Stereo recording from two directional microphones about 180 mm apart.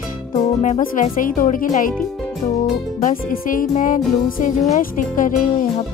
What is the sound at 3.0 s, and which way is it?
Speech, 50° left (ahead or behind).